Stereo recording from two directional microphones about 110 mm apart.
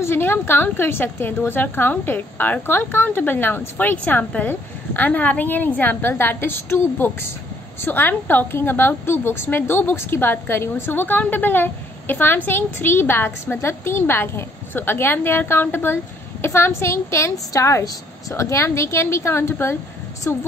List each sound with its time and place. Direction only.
0.0 s a woman's voice: 20° left (ahead or behind)